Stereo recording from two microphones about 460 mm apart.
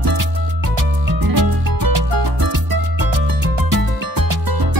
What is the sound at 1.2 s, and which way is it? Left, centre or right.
Music, right.